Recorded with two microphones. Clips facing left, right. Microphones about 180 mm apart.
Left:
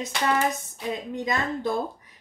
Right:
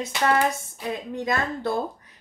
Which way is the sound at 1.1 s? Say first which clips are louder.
Right 2 dB; 20° left (ahead or behind).